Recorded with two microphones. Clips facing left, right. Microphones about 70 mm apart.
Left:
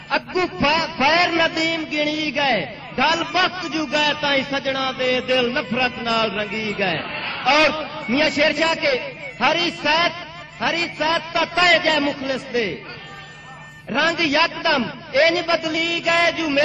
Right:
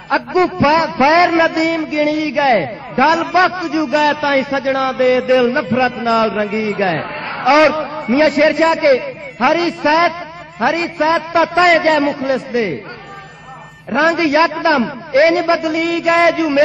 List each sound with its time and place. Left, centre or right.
0.1 s a man's voice: right
4.9 s mantra: right
5.2 s a man's voice: right
13.9 s a man's voice: right